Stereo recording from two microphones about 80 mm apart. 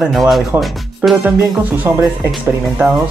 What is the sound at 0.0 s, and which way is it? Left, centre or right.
Speech, centre.